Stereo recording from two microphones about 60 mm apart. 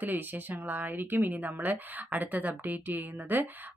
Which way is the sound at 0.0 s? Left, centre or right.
Right.